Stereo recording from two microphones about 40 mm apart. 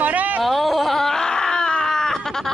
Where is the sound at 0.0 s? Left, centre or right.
Right.